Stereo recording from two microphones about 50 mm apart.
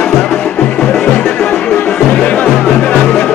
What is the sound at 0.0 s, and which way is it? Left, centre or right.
Music, centre.